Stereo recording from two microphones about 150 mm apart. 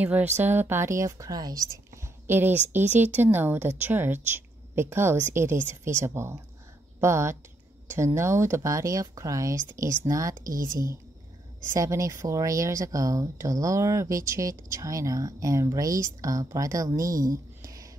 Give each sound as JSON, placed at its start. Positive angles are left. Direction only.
{"t": 0.0, "sound": "speech", "side_deg": -10}
{"t": 11.7, "sound": "speech", "side_deg": -20}